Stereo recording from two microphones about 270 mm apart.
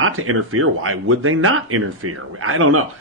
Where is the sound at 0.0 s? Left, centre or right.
Right.